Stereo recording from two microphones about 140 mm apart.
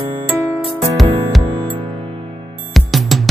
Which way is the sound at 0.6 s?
Centre (ahead or behind).